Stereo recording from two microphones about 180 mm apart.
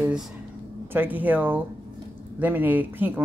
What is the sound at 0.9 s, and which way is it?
Speech, 10° right (ahead or behind).